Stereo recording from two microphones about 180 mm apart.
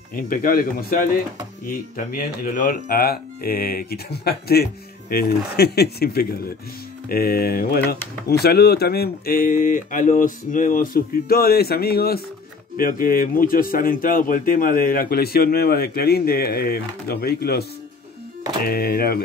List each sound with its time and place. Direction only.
0.1 s speech: 50° left (ahead or behind)
2.1 s speech: 50° left (ahead or behind)